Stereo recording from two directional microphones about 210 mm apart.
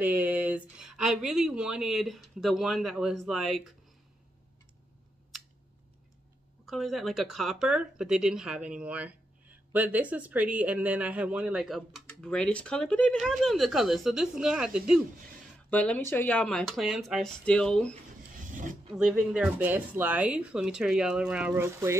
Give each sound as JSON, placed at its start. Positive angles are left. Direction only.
{"t": 0.0, "sound": "speech", "side_deg": -10}
{"t": 6.6, "sound": "speech", "side_deg": 0}
{"t": 15.7, "sound": "speech", "side_deg": 5}
{"t": 18.3, "sound": "a sound", "side_deg": -40}
{"t": 18.9, "sound": "speech", "side_deg": -5}